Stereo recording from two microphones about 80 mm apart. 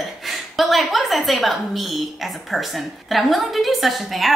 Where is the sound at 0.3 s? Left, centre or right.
Centre.